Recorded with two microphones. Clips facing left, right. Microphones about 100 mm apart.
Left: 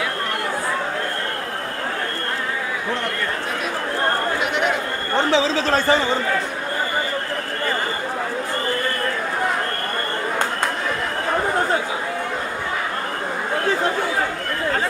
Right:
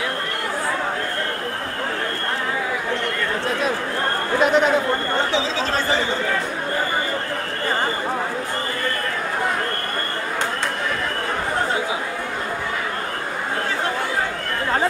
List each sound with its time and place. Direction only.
4.4 s chatter: 35° right (ahead or behind)